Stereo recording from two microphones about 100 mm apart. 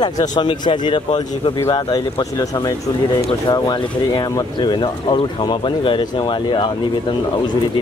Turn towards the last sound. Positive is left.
turn(degrees=55)  # may be behind; listen again after turning